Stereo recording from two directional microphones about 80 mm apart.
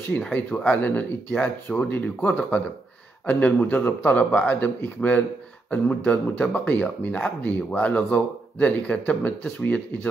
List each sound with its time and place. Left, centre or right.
0.1 s speech: centre